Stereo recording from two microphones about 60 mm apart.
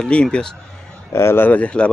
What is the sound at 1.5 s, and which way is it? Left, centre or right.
Speech, left.